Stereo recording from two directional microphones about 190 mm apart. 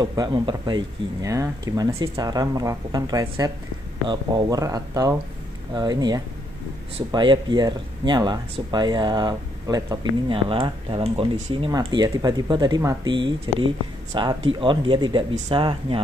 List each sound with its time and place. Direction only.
0.0 s speech: 20° right (ahead or behind)